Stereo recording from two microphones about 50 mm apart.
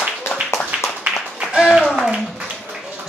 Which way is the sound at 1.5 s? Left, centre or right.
Centre.